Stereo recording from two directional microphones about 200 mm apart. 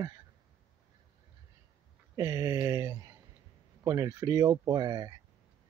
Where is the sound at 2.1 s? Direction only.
15° right (ahead or behind).